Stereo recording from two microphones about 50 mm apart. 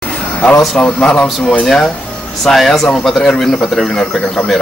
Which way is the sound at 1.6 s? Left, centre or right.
Centre.